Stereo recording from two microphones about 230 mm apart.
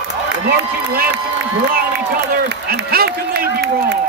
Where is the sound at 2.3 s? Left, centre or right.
Right.